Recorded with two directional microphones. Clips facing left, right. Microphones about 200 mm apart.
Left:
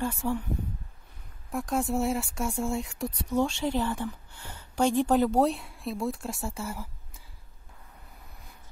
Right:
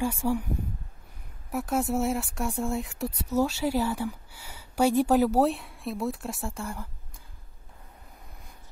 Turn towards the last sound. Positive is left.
turn(degrees=5)  # may be behind; listen again after turning